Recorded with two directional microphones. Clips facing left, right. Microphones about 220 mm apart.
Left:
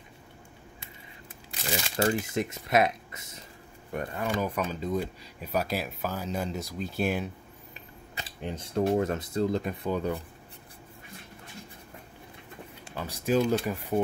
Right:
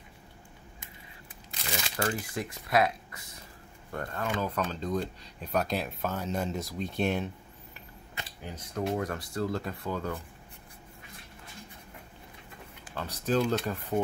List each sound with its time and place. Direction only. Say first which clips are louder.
2.0 s speech: left 6 dB; 25° left (ahead or behind); by 7.2 s 5° left (ahead or behind)
8.4 s speech: left 6 dB; 25° left (ahead or behind)
12.9 s speech: left 2 dB; 10° left (ahead or behind)